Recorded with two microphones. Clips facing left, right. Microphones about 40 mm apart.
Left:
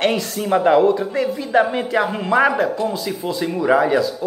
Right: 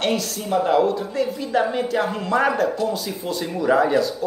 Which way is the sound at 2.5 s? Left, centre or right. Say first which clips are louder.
Left 2 dB; left.